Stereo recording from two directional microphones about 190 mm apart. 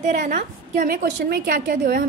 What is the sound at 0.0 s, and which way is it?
A woman's voice, 40° right (ahead or behind).